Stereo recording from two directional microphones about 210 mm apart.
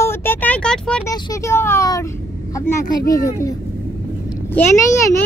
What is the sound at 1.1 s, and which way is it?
Speech, 15° left (ahead or behind).